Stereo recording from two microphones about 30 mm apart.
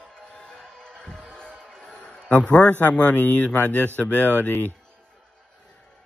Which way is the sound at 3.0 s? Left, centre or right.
Left.